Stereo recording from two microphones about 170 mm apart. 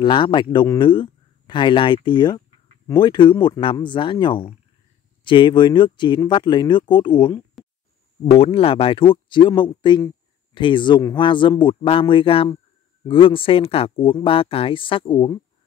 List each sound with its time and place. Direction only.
0.0 s speech: 30° left (ahead or behind)
7.6 s a sound: centre (ahead or behind)
8.3 s speech: 35° left (ahead or behind)